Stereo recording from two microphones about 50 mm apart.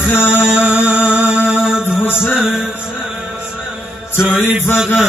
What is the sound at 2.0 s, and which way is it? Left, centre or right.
Music, left.